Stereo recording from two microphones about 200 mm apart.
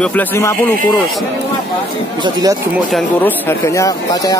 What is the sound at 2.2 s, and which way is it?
Speech, 20° right (ahead or behind).